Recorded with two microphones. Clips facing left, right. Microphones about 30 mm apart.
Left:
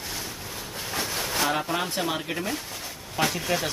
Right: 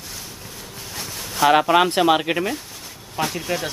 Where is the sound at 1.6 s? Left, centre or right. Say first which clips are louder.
Right 11 dB; right.